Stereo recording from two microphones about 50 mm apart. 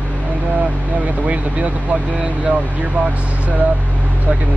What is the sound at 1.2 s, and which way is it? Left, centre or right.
Speech, right.